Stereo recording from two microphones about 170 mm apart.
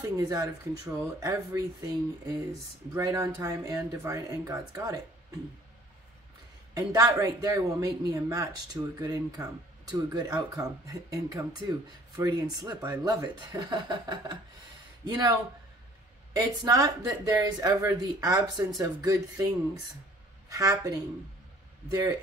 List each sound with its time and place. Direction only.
0.2 s speech: 20° right (ahead or behind)
6.7 s speech: 20° right (ahead or behind)
16.3 s speech: 20° right (ahead or behind)